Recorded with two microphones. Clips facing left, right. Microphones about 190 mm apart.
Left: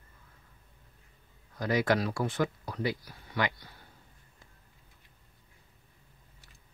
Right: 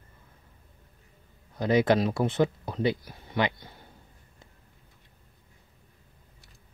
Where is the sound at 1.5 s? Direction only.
25° right (ahead or behind).